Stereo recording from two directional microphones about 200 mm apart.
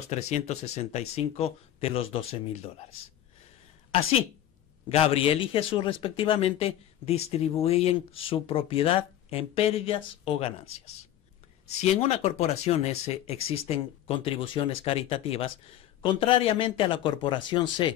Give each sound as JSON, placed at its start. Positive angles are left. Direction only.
{"t": 0.1, "sound": "speech", "side_deg": 35}
{"t": 4.8, "sound": "a man's voice", "side_deg": 30}
{"t": 11.8, "sound": "a man's voice", "side_deg": 30}